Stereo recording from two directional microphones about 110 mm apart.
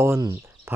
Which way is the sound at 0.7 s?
25° right (ahead or behind).